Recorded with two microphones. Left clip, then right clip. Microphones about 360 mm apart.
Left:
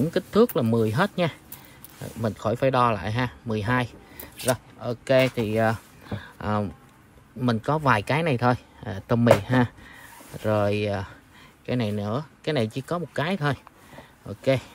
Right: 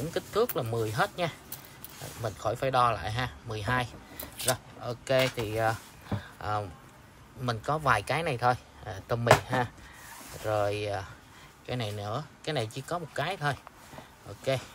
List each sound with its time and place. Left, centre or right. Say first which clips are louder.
0.1 s a man's voice: left 6 dB; left